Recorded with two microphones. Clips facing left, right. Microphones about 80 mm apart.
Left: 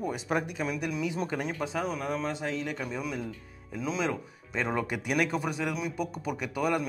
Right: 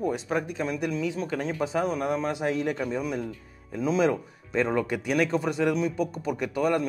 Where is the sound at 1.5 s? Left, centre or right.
Centre.